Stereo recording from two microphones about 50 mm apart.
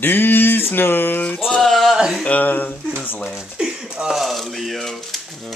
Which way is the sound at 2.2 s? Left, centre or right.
Left.